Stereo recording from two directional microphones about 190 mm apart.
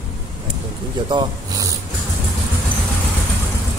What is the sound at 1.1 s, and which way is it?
Speech, 20° right (ahead or behind).